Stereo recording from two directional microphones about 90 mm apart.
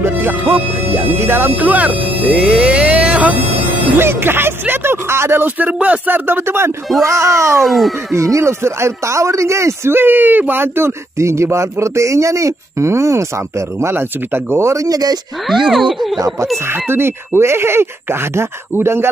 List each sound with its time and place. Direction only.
0.0 s speech: 25° right (ahead or behind); by 3.3 s 10° right (ahead or behind)
4.0 s speech: 25° right (ahead or behind)
7.6 s speech: centre (ahead or behind)
8.1 s speech: 35° right (ahead or behind)
15.7 s speech: centre (ahead or behind)
16.6 s speech: 25° right (ahead or behind)